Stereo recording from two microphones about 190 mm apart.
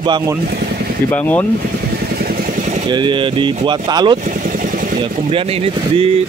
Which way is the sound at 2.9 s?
25° right (ahead or behind).